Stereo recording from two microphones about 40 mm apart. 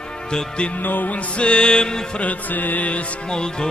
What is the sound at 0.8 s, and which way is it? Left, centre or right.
Mantra, left.